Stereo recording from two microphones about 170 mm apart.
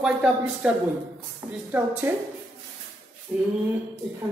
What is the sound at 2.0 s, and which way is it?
Speech, 15° right (ahead or behind).